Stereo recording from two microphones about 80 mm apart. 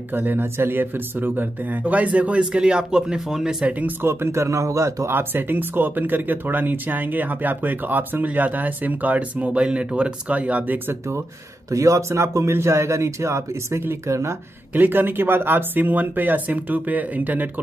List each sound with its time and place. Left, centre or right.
0.1 s speech: right; by 3.6 s centre
3.6 s speech: centre
4.0 s speech: right
11.7 s speech: right
14.7 s speech: right